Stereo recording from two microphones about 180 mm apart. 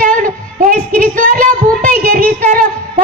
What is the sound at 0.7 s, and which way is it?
Speech, 50° right (ahead or behind).